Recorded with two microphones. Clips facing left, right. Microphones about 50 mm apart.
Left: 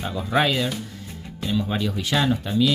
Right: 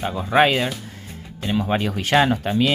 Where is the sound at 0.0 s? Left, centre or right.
Right.